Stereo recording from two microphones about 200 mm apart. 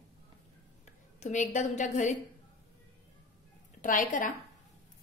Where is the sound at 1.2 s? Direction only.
35° left (ahead or behind).